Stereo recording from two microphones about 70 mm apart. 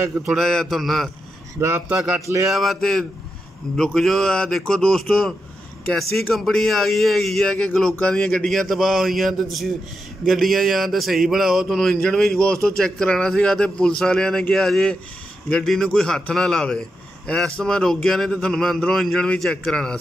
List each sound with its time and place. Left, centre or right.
0.4 s speech: centre
1.6 s a man's voice: right
2.5 s speech: centre
6.3 s speech: centre